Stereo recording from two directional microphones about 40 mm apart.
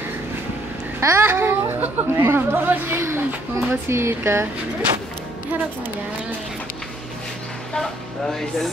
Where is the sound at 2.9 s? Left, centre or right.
Right.